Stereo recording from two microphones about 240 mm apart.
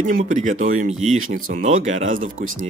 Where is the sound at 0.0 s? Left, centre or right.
Right.